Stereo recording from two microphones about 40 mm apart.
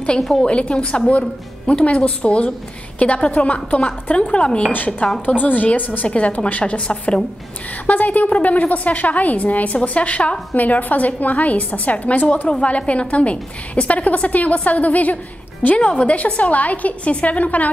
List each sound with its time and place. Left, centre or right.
0.2 s a woman's voice: centre
0.5 s a woman's voice: left
4.7 s a woman's voice: left
6.0 s a woman's voice: left
7.8 s a woman's voice: left
10.5 s a woman's voice: left